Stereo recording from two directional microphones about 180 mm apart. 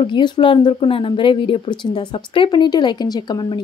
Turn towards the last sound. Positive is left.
turn(degrees=25)  # may be behind; listen again after turning